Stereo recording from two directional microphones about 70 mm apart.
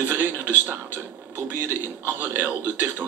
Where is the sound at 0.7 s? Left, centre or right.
Right.